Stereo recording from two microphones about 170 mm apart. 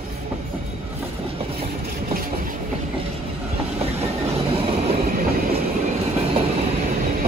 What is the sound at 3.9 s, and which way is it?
Train, 35° right (ahead or behind).